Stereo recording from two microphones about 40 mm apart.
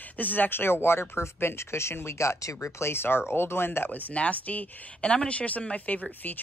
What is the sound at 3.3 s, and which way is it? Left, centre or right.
Speech, left.